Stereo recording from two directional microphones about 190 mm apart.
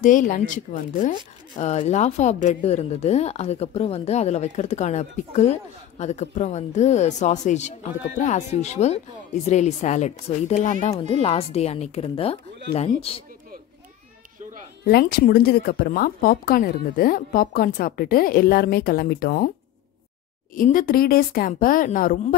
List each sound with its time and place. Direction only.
0.0 s a woman's voice: 45° left (ahead or behind)
14.9 s a woman's voice: 55° left (ahead or behind)
20.5 s a woman's voice: 45° left (ahead or behind)